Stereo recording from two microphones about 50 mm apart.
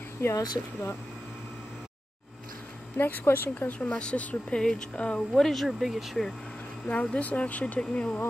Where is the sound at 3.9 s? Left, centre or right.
Left.